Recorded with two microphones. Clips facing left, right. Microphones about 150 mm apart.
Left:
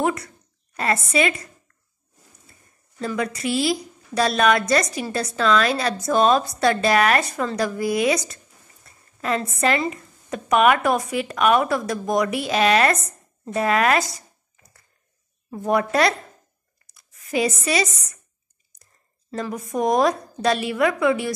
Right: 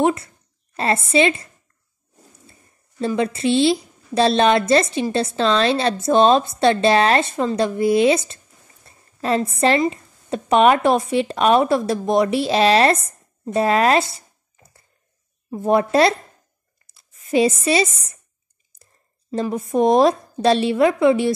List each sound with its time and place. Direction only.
0.0 s a woman's voice: 25° right (ahead or behind)
3.0 s a woman's voice: 25° right (ahead or behind)
16.8 s a sound: 25° right (ahead or behind)
19.3 s a woman's voice: 25° right (ahead or behind)